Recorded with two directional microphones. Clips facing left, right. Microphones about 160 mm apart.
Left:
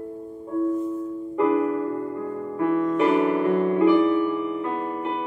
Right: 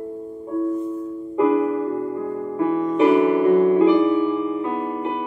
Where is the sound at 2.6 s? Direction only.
20° right (ahead or behind).